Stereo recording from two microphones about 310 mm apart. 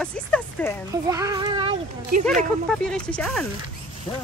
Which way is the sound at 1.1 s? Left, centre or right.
Centre.